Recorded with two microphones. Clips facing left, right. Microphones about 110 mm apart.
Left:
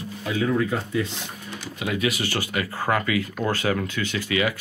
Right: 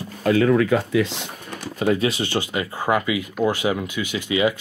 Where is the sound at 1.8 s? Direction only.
35° right (ahead or behind).